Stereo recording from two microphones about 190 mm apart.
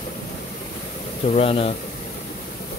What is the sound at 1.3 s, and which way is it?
Speech, 30° left (ahead or behind).